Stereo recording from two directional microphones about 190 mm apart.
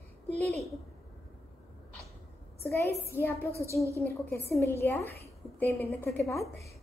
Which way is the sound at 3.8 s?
15° right (ahead or behind).